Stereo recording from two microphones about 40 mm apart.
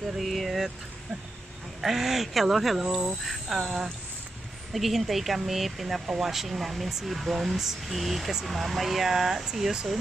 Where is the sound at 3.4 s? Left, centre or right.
Centre.